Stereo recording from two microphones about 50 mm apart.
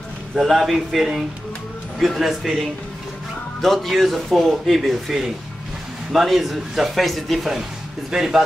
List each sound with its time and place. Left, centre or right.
0.4 s speech: centre
3.6 s speech: centre